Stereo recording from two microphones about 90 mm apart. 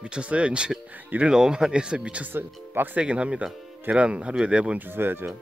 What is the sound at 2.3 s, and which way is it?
Speech, 25° right (ahead or behind).